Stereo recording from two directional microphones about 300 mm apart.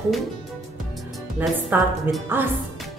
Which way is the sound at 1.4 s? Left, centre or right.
Centre.